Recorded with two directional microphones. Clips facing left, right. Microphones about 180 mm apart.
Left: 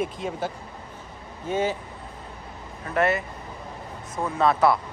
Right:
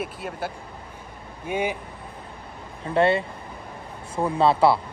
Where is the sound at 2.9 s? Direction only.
30° right (ahead or behind).